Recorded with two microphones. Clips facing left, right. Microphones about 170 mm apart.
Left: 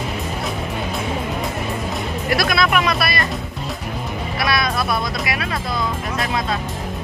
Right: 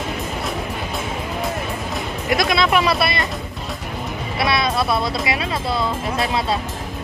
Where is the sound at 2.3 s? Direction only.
25° right (ahead or behind).